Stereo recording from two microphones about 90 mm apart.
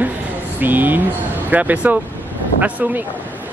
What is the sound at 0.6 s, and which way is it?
Speech, 20° right (ahead or behind).